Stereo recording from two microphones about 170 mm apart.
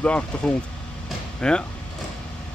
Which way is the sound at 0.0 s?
5° left (ahead or behind).